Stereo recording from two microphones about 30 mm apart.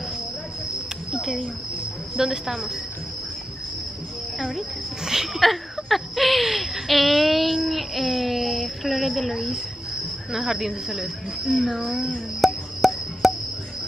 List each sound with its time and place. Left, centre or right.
2.1 s speech: centre
5.0 s speech: centre
5.3 s a sound: centre
10.3 s speech: centre
11.5 s speech: centre
12.4 s a sound: centre
12.8 s cricket: centre